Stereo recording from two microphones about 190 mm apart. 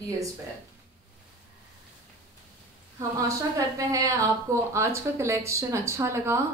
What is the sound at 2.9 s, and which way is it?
A woman's voice, 15° right (ahead or behind).